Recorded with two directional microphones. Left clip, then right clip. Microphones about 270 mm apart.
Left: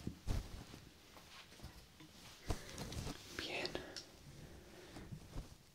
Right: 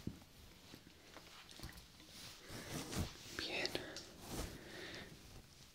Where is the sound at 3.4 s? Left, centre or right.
Centre.